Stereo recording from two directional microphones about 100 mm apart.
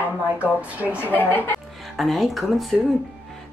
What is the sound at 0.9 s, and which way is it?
Speech, 20° left (ahead or behind).